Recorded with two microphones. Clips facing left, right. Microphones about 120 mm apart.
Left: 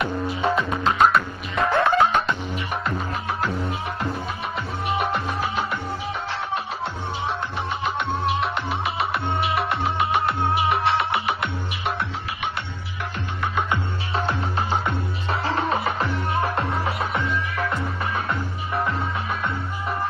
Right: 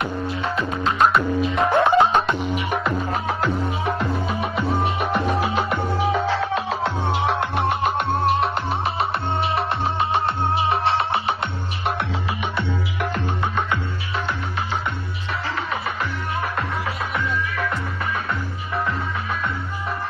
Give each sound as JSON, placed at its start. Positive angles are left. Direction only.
{"t": 0.9, "sound": "music", "side_deg": 0}
{"t": 1.7, "sound": "music", "side_deg": -20}
{"t": 5.7, "sound": "music", "side_deg": -90}
{"t": 7.8, "sound": "music", "side_deg": -45}
{"t": 15.5, "sound": "music", "side_deg": 30}